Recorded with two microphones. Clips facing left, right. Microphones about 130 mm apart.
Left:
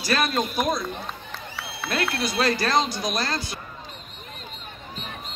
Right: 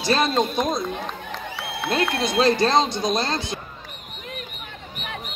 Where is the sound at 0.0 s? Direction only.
25° right (ahead or behind).